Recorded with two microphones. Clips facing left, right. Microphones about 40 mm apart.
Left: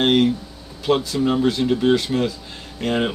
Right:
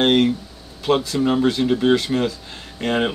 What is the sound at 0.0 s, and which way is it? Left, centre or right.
Speech, centre.